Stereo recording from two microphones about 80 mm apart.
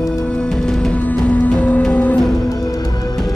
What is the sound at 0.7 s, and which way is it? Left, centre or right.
Music, centre.